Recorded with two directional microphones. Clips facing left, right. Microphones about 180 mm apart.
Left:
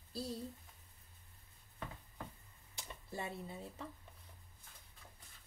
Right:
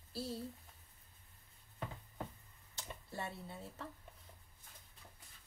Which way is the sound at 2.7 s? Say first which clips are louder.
Even; 15° left (ahead or behind).